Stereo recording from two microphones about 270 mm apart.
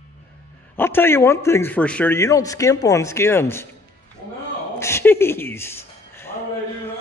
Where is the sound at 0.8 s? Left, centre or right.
Centre.